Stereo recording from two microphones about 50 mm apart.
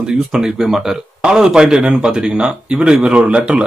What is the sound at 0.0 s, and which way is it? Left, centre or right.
Speech, centre.